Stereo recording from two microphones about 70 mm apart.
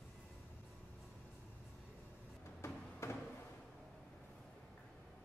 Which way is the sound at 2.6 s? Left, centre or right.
Left.